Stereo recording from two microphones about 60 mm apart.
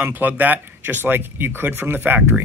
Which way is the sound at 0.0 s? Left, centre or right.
Right.